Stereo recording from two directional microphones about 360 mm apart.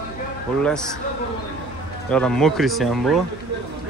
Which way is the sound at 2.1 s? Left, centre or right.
Centre.